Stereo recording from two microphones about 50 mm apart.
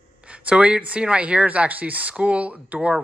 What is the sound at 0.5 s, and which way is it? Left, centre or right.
Speech, right.